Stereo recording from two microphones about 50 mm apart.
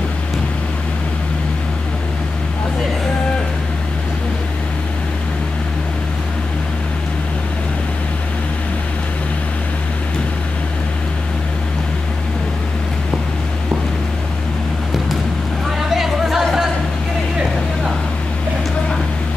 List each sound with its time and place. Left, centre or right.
15.9 s music: centre